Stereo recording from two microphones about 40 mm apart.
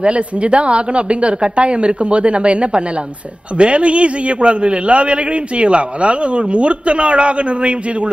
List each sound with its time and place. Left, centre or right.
0.0 s a man's voice: right